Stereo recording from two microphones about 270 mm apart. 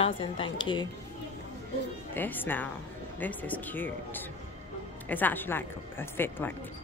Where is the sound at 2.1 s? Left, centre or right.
Centre.